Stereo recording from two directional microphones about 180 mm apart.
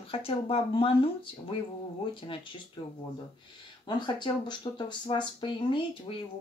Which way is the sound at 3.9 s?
25° left (ahead or behind).